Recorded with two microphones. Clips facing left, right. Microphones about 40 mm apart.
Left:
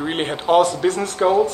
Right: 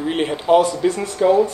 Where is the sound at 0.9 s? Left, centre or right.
Left.